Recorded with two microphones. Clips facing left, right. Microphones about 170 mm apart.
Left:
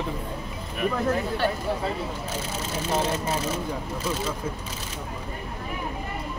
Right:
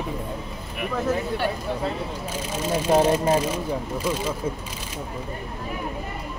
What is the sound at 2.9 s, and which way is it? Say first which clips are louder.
Speech: right 7 dB; 10° right (ahead or behind).